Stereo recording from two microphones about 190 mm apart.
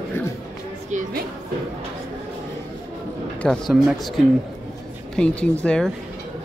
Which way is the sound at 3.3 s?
Centre (ahead or behind).